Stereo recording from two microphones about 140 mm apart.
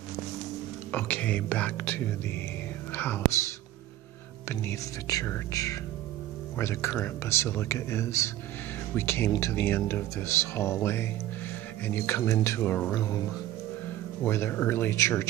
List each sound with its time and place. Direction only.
0.9 s speech: 10° left (ahead or behind)
4.5 s speech: 20° left (ahead or behind)
12.9 s speech: 25° left (ahead or behind)
14.2 s speech: 15° left (ahead or behind)